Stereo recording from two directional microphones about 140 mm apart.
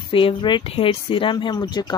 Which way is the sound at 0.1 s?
40° left (ahead or behind).